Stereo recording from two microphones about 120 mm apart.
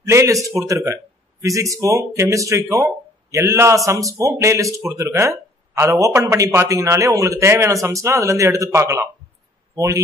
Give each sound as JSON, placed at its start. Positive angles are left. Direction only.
{"t": 0.0, "sound": "speech", "side_deg": -25}